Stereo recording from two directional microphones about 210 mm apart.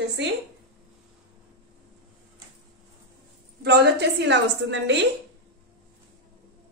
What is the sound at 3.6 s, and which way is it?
A woman's voice, 55° right (ahead or behind).